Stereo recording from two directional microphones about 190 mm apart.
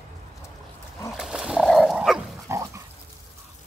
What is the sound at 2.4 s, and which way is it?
Dog, 15° right (ahead or behind).